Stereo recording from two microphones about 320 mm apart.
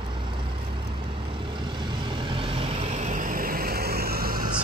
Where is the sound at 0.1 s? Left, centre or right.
Centre.